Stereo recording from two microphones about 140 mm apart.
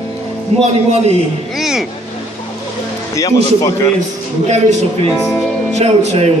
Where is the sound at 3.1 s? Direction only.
25° left (ahead or behind).